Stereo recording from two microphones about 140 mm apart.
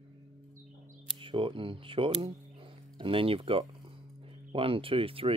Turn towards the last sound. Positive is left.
turn(degrees=-40)  # may be behind; listen again after turning